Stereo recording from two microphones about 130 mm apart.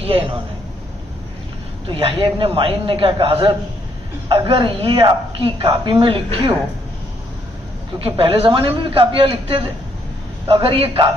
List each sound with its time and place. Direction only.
0.0 s a man's voice: 50° right (ahead or behind)
1.9 s speech: 45° right (ahead or behind)
8.0 s a man's voice: 50° right (ahead or behind)